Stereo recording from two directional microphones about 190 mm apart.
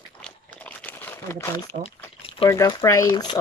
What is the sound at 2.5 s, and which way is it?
Speech, 15° left (ahead or behind).